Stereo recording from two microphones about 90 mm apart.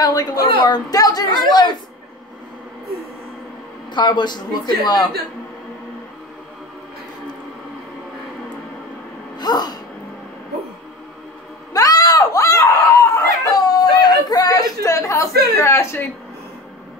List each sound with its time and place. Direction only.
0.0 s a woman's voice: 45° left (ahead or behind)
3.9 s a woman's voice: 55° left (ahead or behind)
9.4 s a woman's voice: 50° left (ahead or behind)
11.7 s a sound: 45° left (ahead or behind)
13.1 s whimper: 40° left (ahead or behind)